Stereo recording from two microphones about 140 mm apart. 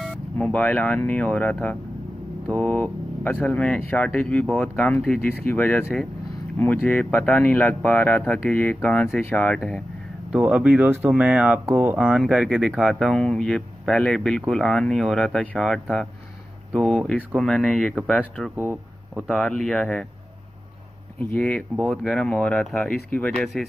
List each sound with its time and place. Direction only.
0.0 s speech: 5° left (ahead or behind)
10.3 s speech: 10° right (ahead or behind)
18.6 s speech: 15° right (ahead or behind)
19.2 s speech: 5° left (ahead or behind)
21.4 s speech: 10° left (ahead or behind)